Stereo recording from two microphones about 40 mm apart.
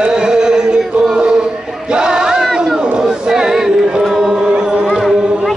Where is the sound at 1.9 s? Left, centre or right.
Centre.